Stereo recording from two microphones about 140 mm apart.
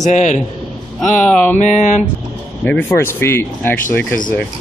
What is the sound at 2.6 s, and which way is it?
Speech, 10° left (ahead or behind).